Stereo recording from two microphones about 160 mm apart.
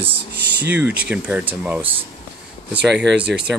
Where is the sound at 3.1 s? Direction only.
90° right.